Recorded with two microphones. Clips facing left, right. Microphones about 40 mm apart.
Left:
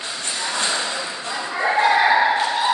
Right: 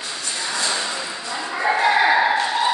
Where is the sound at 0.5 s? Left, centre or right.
Left.